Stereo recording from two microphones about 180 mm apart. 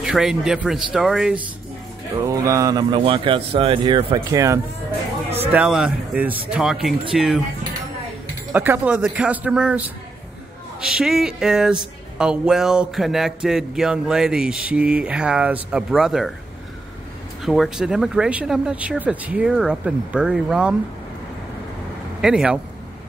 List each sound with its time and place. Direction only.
0.0 s speech: centre (ahead or behind)
2.2 s a man's voice: 15° right (ahead or behind); by 7.4 s centre (ahead or behind)
8.5 s a man's voice: 10° right (ahead or behind)
17.5 s speech: centre (ahead or behind)
22.2 s speech: 5° right (ahead or behind)